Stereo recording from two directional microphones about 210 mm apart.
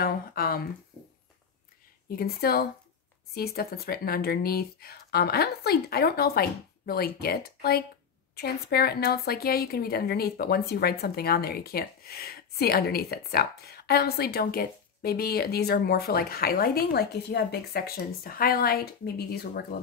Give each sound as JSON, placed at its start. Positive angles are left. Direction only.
{"t": 0.0, "sound": "speech", "side_deg": 45}
{"t": 2.0, "sound": "a woman's voice", "side_deg": 45}